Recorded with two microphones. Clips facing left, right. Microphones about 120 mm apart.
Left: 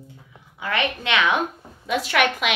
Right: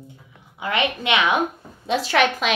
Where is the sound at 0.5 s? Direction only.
20° right (ahead or behind).